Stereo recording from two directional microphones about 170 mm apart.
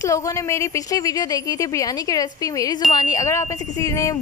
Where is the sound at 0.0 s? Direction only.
20° left (ahead or behind).